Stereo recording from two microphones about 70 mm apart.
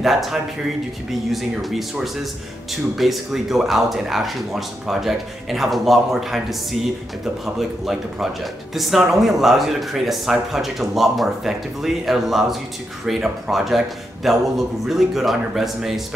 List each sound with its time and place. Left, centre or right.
0.0 s speech: centre
3.0 s speech: centre
7.4 s speech: centre